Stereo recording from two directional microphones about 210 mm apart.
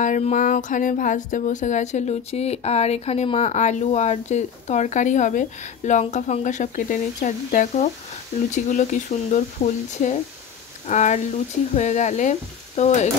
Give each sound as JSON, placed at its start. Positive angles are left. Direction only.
{"t": 0.0, "sound": "speech", "side_deg": 35}